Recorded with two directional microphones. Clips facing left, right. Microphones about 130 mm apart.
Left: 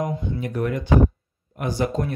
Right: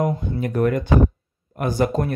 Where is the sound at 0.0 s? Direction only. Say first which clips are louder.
Right 4 dB; 50° right (ahead or behind).